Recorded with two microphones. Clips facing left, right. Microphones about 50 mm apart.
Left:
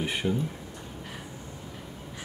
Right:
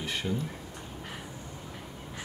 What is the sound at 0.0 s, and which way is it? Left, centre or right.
Speech, centre.